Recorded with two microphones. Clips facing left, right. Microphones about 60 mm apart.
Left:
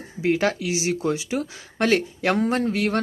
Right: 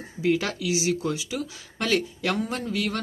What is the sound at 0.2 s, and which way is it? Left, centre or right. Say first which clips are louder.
Speech: left 3 dB; left.